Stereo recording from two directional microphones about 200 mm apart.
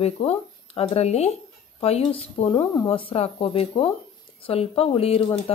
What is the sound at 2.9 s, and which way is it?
Speech, 30° left (ahead or behind).